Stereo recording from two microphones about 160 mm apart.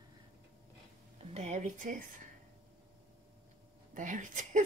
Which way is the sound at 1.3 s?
45° right (ahead or behind).